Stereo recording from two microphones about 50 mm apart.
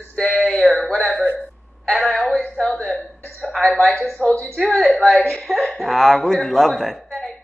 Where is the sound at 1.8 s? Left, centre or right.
Centre.